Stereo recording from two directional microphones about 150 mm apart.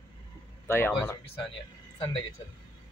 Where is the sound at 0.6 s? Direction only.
15° left (ahead or behind).